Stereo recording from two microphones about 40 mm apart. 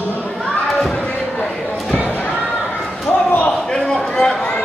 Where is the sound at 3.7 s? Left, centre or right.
Centre.